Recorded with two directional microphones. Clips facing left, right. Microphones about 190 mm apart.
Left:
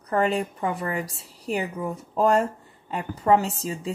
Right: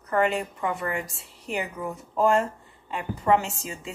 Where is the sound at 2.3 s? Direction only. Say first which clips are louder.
Left 2 dB; 40° left (ahead or behind).